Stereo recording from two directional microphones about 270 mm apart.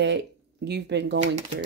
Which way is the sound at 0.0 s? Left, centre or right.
Right.